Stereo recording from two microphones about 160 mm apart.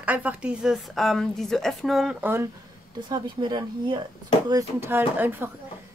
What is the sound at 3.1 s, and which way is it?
A woman's voice, 25° right (ahead or behind).